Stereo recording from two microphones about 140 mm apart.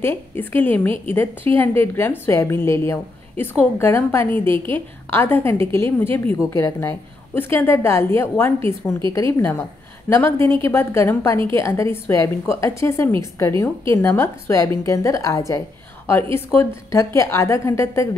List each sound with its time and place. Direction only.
0.0 s a woman's voice: 15° left (ahead or behind)